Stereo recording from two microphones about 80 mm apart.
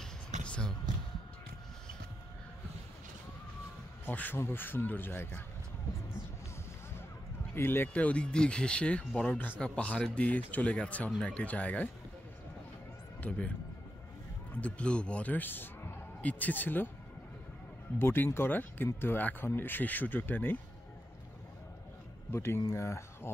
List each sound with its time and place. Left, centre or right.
0.5 s basketball bounce: centre
4.0 s speech: left
7.5 s speech: left
14.5 s a man's voice: centre
17.9 s speech: left
22.3 s speech: left